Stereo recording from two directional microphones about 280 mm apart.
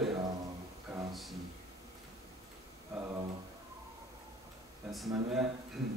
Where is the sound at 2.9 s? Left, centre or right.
Centre.